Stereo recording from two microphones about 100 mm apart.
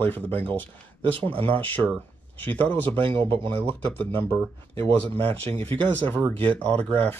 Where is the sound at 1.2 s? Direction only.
65° right (ahead or behind).